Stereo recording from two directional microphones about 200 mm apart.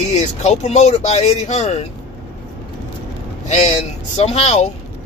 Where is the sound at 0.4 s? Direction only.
35° left (ahead or behind).